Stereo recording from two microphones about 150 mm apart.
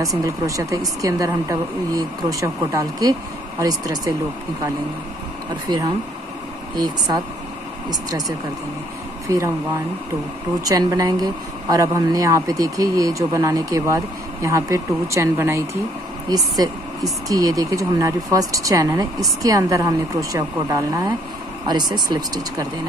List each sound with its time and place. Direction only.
0.2 s speech: 20° right (ahead or behind)
5.7 s speech: 30° right (ahead or behind)
10.6 s speech: 25° right (ahead or behind)